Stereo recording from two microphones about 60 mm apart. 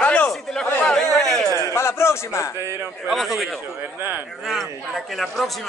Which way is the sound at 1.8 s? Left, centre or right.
Left.